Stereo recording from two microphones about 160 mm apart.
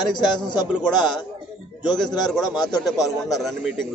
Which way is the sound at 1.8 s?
25° left (ahead or behind).